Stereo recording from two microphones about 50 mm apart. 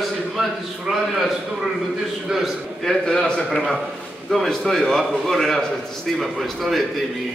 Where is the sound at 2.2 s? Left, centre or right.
Centre.